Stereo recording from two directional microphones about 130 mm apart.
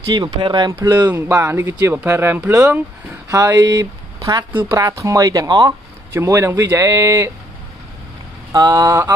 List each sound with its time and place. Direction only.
0.1 s speech: 35° right (ahead or behind)
1.1 s speech: 20° right (ahead or behind)
8.5 s speech: 30° right (ahead or behind)